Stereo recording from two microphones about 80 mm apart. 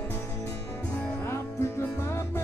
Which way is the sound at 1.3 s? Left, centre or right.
Left.